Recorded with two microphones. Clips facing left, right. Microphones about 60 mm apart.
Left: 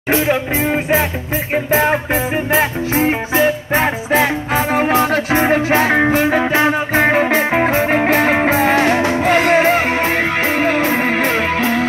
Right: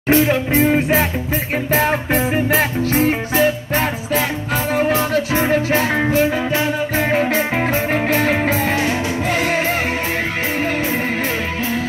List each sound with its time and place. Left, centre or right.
0.1 s music: centre
2.9 s music: centre
8.5 s music: left